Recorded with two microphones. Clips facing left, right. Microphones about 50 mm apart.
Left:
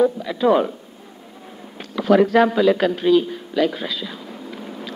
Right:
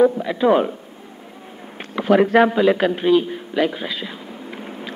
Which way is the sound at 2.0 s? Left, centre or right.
Right.